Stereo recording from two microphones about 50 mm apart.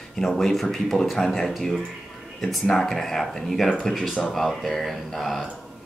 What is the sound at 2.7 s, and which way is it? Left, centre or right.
Speech, centre.